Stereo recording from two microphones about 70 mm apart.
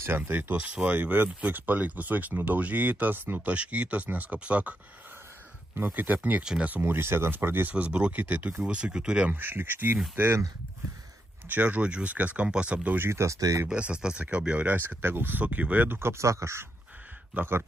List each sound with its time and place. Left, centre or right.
0.0 s speech: right
5.8 s speech: right
6.4 s speech: centre
6.8 s speech: right
7.7 s speech: centre
9.3 s speech: right
11.4 s speech: right
13.0 s speech: right
13.4 s speech: right
13.7 s speech: centre
14.7 s speech: right
17.3 s speech: right